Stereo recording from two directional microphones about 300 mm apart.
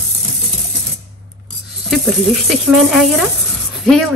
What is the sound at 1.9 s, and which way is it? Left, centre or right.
Speech, centre.